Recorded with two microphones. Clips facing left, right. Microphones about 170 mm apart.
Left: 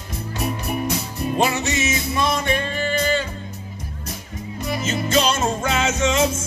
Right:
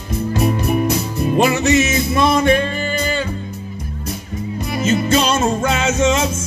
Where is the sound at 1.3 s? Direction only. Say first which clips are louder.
Right 7 dB; 65° right (ahead or behind).